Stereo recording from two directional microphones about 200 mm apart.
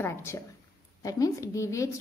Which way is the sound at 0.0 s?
10° left (ahead or behind).